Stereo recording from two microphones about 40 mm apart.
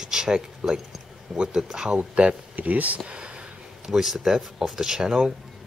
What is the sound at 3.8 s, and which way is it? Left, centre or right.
Speech, centre.